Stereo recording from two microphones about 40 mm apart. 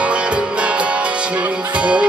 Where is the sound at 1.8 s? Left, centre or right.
Right.